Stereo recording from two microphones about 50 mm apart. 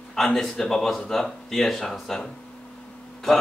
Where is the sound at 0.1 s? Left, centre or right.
Centre.